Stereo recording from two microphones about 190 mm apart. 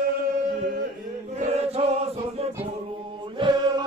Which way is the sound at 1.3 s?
35° right (ahead or behind).